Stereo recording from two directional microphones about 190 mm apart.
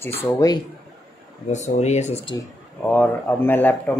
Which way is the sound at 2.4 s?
10° left (ahead or behind).